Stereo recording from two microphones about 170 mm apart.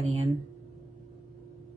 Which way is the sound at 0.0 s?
40° right (ahead or behind).